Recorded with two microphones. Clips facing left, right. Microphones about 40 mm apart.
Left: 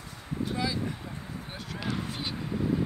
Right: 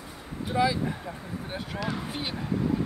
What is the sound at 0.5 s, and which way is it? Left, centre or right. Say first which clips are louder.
Speech: right 8 dB; right.